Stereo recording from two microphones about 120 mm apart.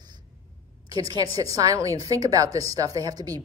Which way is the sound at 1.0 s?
30° right (ahead or behind).